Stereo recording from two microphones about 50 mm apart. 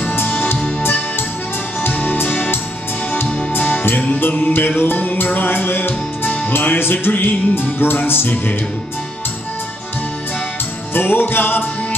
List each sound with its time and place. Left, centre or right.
0.1 s music: left
1.8 s music: left
10.9 s music: left